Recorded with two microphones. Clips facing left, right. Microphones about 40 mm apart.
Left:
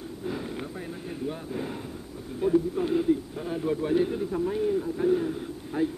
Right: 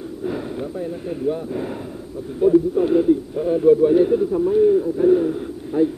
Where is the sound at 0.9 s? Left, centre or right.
Centre.